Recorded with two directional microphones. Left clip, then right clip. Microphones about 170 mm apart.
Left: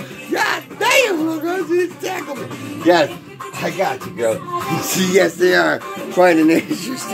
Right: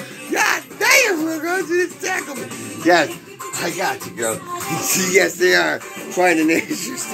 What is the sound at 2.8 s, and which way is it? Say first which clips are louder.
Speech: left 1 dB; 20° right (ahead or behind).